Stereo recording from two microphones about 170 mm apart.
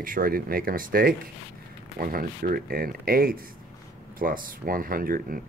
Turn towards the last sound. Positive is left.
turn(degrees=-60)  # may be behind; listen again after turning